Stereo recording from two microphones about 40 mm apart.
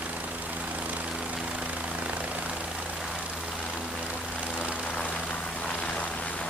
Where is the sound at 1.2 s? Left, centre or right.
Right.